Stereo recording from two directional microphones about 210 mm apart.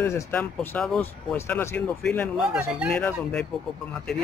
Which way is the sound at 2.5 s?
5° right (ahead or behind).